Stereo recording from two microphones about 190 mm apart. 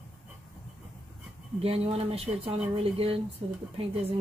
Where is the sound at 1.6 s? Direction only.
30° right (ahead or behind).